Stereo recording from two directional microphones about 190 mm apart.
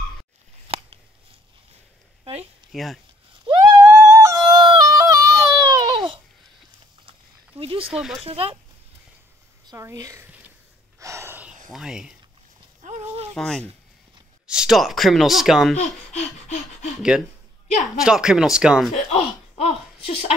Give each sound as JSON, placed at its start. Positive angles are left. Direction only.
{"t": 0.7, "sound": "scissors", "side_deg": -30}
{"t": 2.7, "sound": "speech", "side_deg": 0}
{"t": 3.4, "sound": "yodeling", "side_deg": -15}
{"t": 7.1, "sound": "a sound", "side_deg": -30}
{"t": 7.9, "sound": "speech", "side_deg": 0}
{"t": 8.2, "sound": "speech", "side_deg": -30}
{"t": 9.7, "sound": "a sound", "side_deg": -15}
{"t": 11.0, "sound": "snort", "side_deg": -15}
{"t": 11.7, "sound": "speech", "side_deg": -5}
{"t": 12.8, "sound": "a sound", "side_deg": -35}
{"t": 13.3, "sound": "speech", "side_deg": 5}
{"t": 15.8, "sound": "speech", "side_deg": 40}
{"t": 18.0, "sound": "speech", "side_deg": -5}
{"t": 19.5, "sound": "a sound", "side_deg": 35}